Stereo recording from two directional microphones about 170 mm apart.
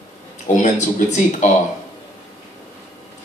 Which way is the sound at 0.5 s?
45° left (ahead or behind).